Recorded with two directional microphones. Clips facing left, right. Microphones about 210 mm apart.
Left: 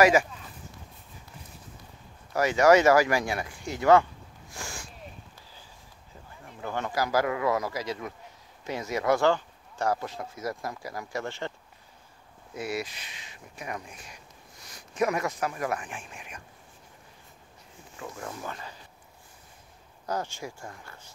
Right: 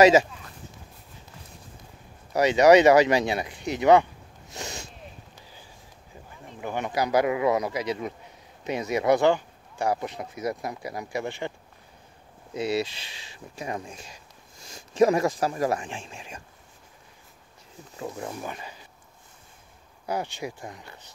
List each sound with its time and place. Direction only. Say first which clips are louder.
0.0 s speech: right 4 dB; 25° right (ahead or behind)
2.3 s speech: right 4 dB; 20° right (ahead or behind)
4.5 s a sound: right 4 dB; 20° right (ahead or behind)
6.4 s speech: right 2 dB; 15° right (ahead or behind)
12.5 s speech: right 6 dB; 25° right (ahead or behind)
18.0 s speech: right 4 dB; 20° right (ahead or behind)
20.1 s speech: right 3 dB; 15° right (ahead or behind)